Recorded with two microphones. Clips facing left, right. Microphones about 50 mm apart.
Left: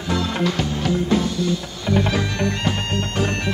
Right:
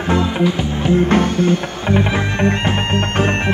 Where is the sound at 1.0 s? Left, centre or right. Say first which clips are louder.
Right 6 dB; right.